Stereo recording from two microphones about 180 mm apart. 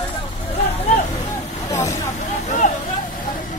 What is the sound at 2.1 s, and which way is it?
Vehicle, 40° left (ahead or behind).